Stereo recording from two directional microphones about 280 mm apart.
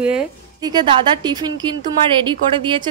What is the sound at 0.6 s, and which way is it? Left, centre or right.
Speech, centre.